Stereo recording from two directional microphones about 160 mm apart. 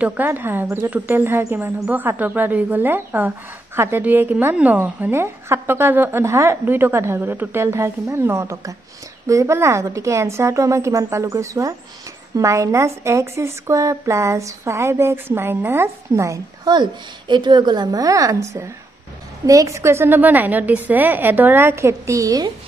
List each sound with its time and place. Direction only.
0.0 s a woman's voice: 10° right (ahead or behind)